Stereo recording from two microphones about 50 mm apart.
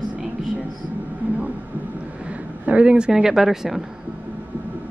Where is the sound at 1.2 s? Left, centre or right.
Right.